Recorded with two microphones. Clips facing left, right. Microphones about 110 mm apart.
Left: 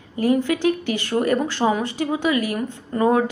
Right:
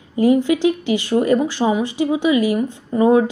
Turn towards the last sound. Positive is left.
turn(degrees=-15)  # may be behind; listen again after turning